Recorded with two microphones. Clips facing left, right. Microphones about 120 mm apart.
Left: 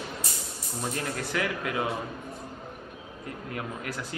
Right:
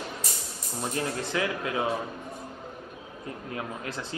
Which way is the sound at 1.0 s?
25° right (ahead or behind).